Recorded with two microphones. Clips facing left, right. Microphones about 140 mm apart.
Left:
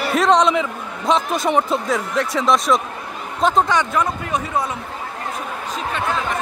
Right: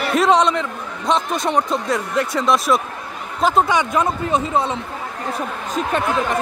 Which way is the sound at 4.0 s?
25° right (ahead or behind).